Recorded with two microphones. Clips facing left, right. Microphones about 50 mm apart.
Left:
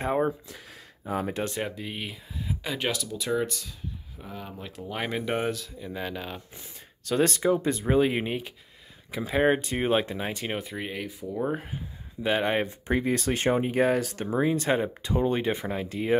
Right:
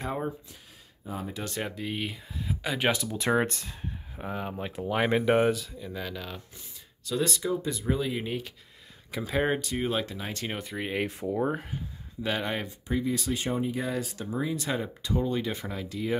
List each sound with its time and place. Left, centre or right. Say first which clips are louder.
0.0 s speech: left 6 dB; left
1.0 s speech: left 6 dB; left
1.6 s speech: even; centre
2.9 s speech: right 3 dB; right
3.3 s speech: right 2 dB; right
4.2 s speech: right 6 dB; right
4.7 s speech: right 5 dB; centre
5.9 s speech: left 3 dB; centre
7.1 s speech: left 5 dB; left
8.3 s speech: left 2 dB; centre
10.3 s speech: left 2 dB; centre; by 12.7 s left
12.8 s speech: even; left